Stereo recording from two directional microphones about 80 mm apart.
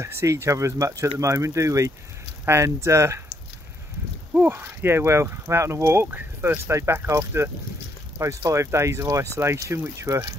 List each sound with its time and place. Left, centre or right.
0.0 s speech: right
4.3 s speech: right